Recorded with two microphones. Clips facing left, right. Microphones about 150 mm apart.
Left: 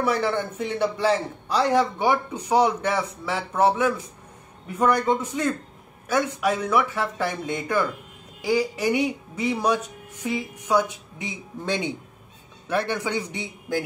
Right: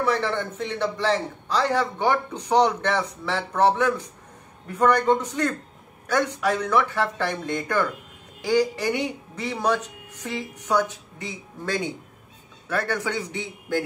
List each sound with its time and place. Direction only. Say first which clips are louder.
0.0 s a man's voice: left 1 dB; 10° left (ahead or behind)